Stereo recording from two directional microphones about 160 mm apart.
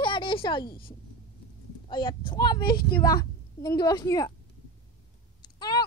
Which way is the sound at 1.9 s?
30° left (ahead or behind).